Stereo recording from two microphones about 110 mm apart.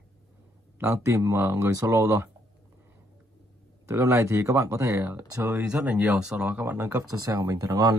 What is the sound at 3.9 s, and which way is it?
Speech, 25° right (ahead or behind).